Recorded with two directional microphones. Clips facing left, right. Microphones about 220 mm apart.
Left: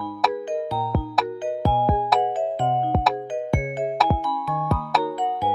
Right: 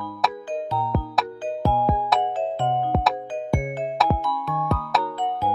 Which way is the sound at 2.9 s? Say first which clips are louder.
Right 1 dB; centre (ahead or behind).